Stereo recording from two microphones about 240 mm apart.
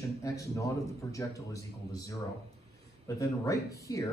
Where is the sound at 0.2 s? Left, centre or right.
Centre.